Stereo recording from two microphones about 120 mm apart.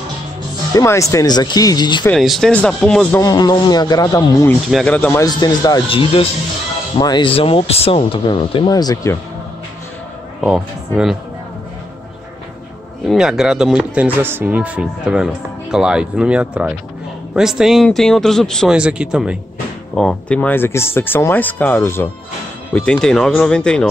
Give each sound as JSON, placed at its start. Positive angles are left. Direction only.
{"t": 0.7, "sound": "speech", "side_deg": 25}
{"t": 2.1, "sound": "speech", "side_deg": 0}
{"t": 3.2, "sound": "speech", "side_deg": 30}
{"t": 4.6, "sound": "speech", "side_deg": 0}
{"t": 5.1, "sound": "speech", "side_deg": 30}
{"t": 5.9, "sound": "speech", "side_deg": 50}
{"t": 7.0, "sound": "speech", "side_deg": 40}
{"t": 8.6, "sound": "speech", "side_deg": 30}
{"t": 10.4, "sound": "speech", "side_deg": -5}
{"t": 13.0, "sound": "speech", "side_deg": -5}
{"t": 18.7, "sound": "speech", "side_deg": -10}
{"t": 19.9, "sound": "speech", "side_deg": 5}
{"t": 22.8, "sound": "speech", "side_deg": 5}